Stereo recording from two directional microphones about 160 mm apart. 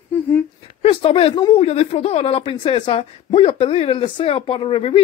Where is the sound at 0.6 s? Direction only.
35° left (ahead or behind).